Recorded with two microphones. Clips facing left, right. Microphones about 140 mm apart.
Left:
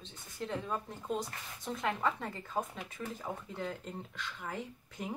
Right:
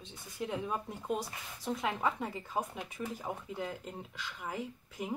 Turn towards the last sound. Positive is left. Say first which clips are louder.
# right 2 dB
turn(degrees=-5)  # may be behind; listen again after turning